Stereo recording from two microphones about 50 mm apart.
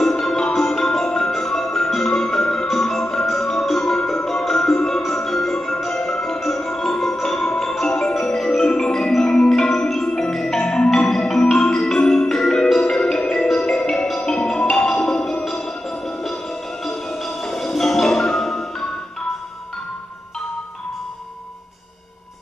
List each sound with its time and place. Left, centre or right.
0.0 s music: centre
5.1 s marimba: centre
5.9 s music: centre
7.8 s marimba: centre
8.1 s music: centre
14.1 s marimba: centre
17.5 s music: centre